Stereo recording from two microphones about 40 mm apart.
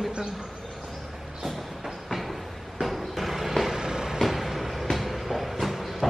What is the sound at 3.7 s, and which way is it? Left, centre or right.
Vehicle, centre.